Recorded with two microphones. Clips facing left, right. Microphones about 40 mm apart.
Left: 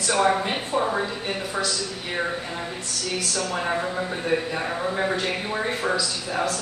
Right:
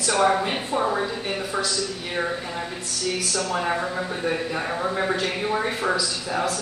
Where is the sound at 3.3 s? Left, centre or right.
Centre.